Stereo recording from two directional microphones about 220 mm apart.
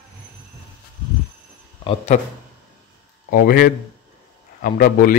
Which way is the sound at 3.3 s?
40° left (ahead or behind).